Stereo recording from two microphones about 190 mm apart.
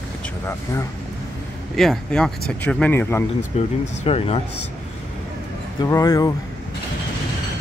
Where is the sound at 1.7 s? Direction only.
Centre (ahead or behind).